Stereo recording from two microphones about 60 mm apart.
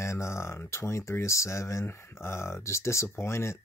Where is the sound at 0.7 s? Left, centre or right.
Left.